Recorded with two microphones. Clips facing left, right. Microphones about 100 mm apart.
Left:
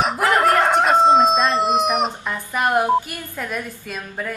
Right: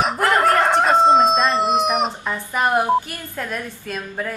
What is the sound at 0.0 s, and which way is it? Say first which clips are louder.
Crowing: even; centre (ahead or behind).